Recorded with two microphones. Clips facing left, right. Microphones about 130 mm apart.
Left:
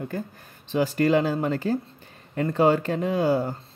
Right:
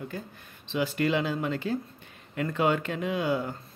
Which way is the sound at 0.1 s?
45° left (ahead or behind).